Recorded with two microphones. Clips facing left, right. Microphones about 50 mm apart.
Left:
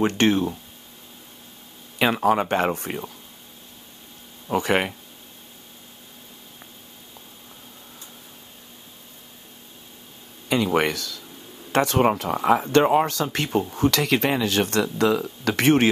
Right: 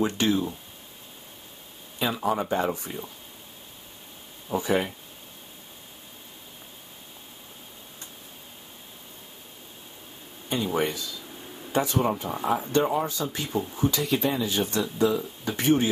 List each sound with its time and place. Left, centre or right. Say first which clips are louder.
0.0 s speech: left 4 dB; left
2.0 s speech: left 6 dB; left
4.5 s speech: left 3 dB; left
10.5 s speech: left 5 dB; left